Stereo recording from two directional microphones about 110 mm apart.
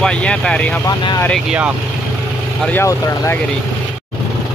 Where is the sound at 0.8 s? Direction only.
35° left (ahead or behind).